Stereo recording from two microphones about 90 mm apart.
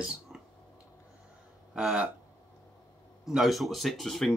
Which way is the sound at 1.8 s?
10° right (ahead or behind).